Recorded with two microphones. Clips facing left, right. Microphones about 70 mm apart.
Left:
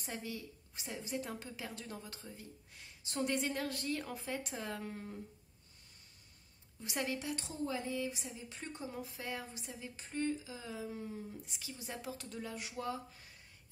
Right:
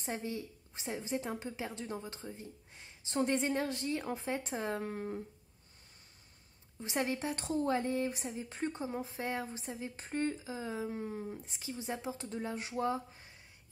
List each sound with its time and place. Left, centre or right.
0.0 s a woman's voice: right
6.8 s a woman's voice: right